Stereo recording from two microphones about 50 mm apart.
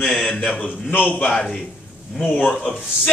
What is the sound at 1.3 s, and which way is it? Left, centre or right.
A man's voice, centre.